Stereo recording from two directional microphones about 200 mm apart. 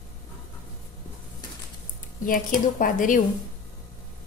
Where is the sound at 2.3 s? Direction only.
45° left (ahead or behind).